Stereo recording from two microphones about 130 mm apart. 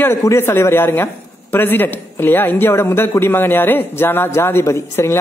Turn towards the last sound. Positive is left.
turn(degrees=20)  # may be behind; listen again after turning